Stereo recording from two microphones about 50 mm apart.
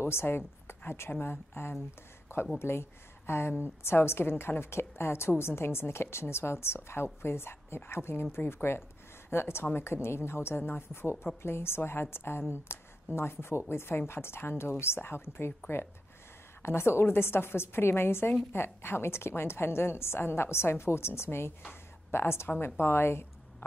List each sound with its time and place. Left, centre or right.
0.0 s speech: left
2.3 s a sound: left
2.6 s a woman's voice: left
16.6 s a woman's voice: left